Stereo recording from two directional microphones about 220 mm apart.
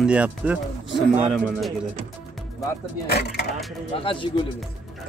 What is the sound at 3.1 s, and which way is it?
Speech, 45° left (ahead or behind).